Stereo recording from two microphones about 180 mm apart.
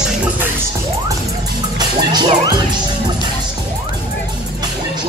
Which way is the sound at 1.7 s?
25° right (ahead or behind).